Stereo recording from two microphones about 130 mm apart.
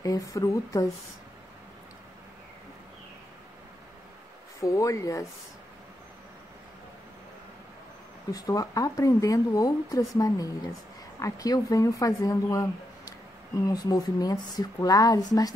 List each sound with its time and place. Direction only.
0.3 s speech: 25° left (ahead or behind)
4.6 s speech: 25° left (ahead or behind)
8.3 s speech: 25° left (ahead or behind)